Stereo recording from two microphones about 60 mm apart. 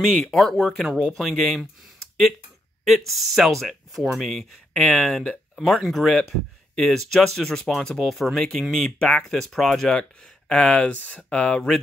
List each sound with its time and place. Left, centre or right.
0.1 s speech: centre
0.6 s speech: centre
3.1 s speech: centre